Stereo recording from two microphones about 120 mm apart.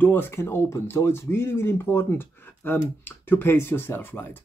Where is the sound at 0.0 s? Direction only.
15° left (ahead or behind).